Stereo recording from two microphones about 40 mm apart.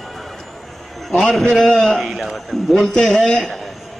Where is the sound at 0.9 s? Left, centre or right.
Centre.